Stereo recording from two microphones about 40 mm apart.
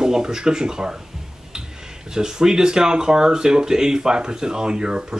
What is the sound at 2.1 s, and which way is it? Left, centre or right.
Speech, centre.